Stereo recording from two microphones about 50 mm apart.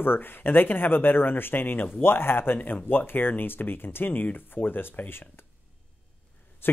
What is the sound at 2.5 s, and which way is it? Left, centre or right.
Speech, left.